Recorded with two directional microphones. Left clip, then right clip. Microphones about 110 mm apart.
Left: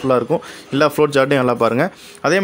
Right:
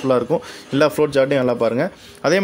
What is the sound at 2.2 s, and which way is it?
Speech, 10° left (ahead or behind).